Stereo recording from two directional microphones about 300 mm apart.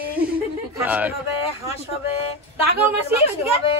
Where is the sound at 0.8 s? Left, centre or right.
Centre.